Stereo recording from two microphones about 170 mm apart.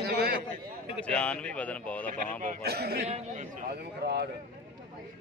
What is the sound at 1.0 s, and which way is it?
A man's voice, 5° left (ahead or behind).